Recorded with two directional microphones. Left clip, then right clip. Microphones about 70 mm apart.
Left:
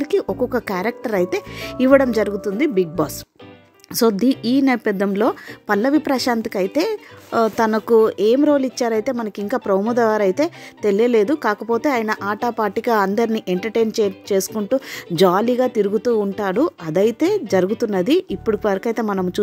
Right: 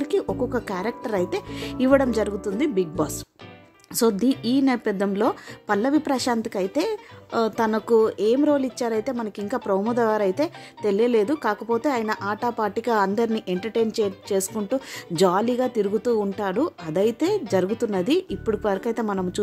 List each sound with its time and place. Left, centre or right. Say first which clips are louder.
0.0 s a woman's voice: left 4 dB; left